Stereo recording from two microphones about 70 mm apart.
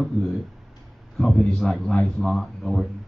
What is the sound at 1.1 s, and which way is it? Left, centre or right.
A man's voice, centre.